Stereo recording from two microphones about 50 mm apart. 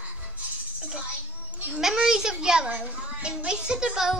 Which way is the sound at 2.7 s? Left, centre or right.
Right.